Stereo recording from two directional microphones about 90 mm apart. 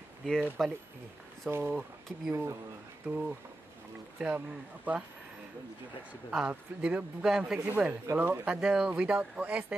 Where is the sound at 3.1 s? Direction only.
10° right (ahead or behind).